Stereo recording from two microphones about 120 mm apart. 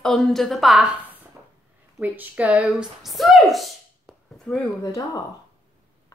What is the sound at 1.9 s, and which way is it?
Speech, 15° right (ahead or behind).